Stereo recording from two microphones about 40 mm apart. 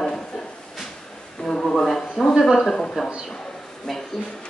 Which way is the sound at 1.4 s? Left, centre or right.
Centre.